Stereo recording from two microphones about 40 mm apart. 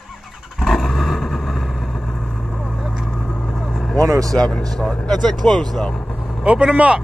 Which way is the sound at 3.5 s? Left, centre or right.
Centre.